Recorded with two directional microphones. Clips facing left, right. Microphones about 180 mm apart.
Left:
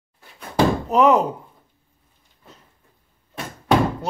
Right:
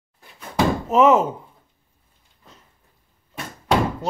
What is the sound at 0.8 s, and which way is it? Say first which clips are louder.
Speech: right 3 dB; centre (ahead or behind).